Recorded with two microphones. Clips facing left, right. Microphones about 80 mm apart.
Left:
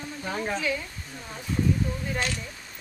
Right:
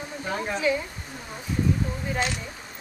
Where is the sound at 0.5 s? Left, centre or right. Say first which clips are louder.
Right 4 dB; right.